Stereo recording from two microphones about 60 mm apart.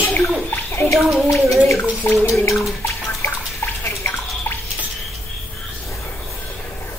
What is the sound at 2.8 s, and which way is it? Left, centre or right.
Bathtub, left.